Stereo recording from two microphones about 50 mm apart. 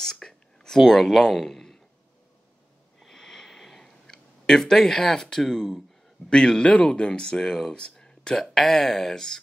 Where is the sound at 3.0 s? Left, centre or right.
Centre.